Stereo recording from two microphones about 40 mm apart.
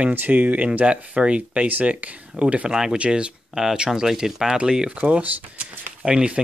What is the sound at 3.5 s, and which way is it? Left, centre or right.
Speech, centre.